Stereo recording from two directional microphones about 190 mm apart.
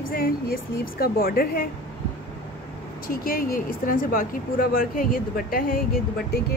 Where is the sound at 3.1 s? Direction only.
50° left (ahead or behind).